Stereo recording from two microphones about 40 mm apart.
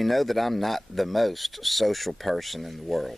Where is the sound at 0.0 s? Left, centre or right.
Centre.